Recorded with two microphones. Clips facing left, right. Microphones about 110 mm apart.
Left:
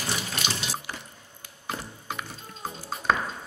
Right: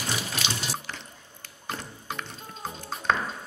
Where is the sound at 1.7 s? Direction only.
5° left (ahead or behind).